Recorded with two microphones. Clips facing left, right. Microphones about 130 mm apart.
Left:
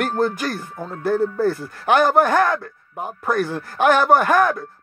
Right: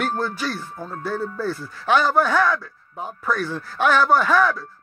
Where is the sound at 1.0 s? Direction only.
55° left (ahead or behind).